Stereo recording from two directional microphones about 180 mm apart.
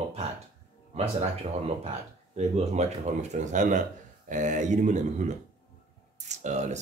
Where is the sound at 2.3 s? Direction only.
40° right (ahead or behind).